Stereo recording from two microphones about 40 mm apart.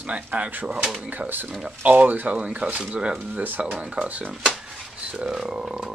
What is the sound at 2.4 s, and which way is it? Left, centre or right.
Speech, right.